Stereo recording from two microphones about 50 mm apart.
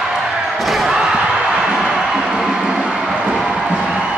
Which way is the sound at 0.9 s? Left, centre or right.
Centre.